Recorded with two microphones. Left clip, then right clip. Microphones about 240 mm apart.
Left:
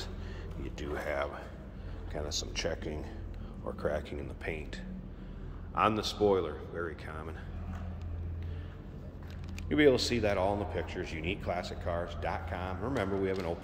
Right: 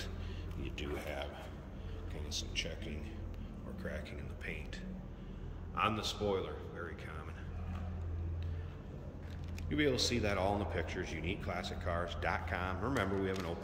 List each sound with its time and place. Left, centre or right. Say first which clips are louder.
0.7 s a man's voice: left 7 dB; centre; by 7.2 s left
9.7 s speech: left 8 dB; centre